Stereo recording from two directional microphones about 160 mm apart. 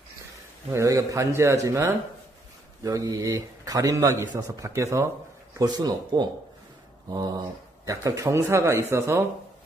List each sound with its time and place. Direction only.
0.7 s a man's voice: 20° right (ahead or behind)